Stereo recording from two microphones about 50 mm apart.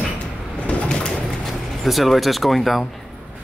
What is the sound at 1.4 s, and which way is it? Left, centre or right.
Speech, centre.